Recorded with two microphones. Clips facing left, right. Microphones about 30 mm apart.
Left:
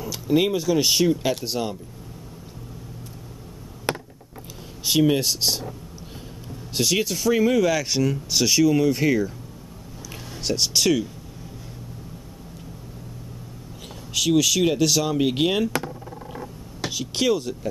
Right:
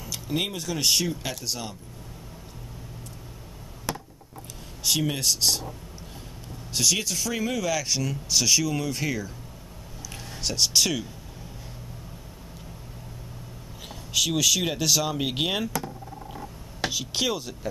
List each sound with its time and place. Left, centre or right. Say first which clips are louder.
0.0 s speech: left 8 dB; centre
0.7 s speech: left 2 dB; centre
1.5 s speech: left 7 dB; left
3.9 s a sound: left 6 dB; left
4.8 s speech: left 6 dB; centre
6.7 s speech: left 3 dB; centre
10.1 s speech: left 3 dB; centre
14.1 s speech: left 4 dB; centre
16.9 s speech: left 7 dB; centre